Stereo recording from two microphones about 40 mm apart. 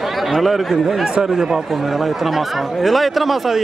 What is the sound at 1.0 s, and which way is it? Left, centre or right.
Speech, centre.